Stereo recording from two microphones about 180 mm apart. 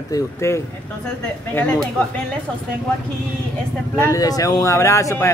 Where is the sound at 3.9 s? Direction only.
15° left (ahead or behind).